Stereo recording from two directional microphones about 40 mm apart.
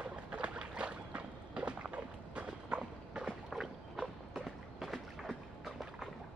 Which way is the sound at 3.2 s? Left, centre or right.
Centre.